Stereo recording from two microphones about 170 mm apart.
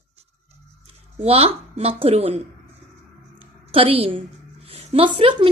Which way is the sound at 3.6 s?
35° right (ahead or behind).